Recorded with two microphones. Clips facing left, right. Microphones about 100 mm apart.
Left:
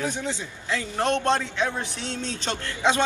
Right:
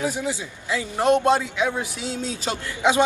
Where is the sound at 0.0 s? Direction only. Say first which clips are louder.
Right 3 dB; 10° right (ahead or behind).